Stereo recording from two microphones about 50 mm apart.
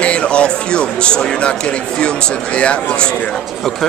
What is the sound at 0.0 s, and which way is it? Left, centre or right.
Speech, left.